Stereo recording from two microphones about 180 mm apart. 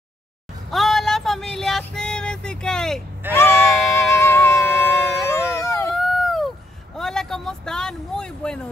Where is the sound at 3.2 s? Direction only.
10° right (ahead or behind).